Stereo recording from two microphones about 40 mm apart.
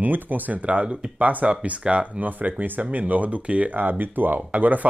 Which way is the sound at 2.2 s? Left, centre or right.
Right.